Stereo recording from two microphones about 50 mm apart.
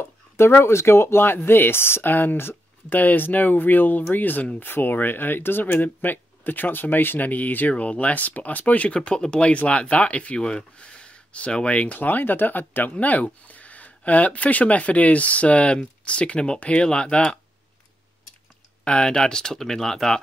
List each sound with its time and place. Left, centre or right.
0.5 s speech: left; by 17.4 s centre
18.9 s speech: centre